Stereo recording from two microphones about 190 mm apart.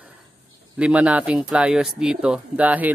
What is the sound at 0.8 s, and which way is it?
A man's voice, 5° right (ahead or behind).